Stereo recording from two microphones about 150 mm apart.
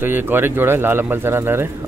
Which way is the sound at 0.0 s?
15° right (ahead or behind).